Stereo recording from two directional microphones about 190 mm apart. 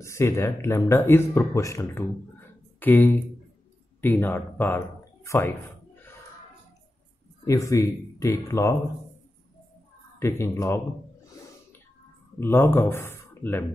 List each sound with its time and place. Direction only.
0.0 s speech: 15° left (ahead or behind)
7.4 s speech: 15° left (ahead or behind)
10.1 s speech: 15° left (ahead or behind)
12.4 s speech: 10° left (ahead or behind)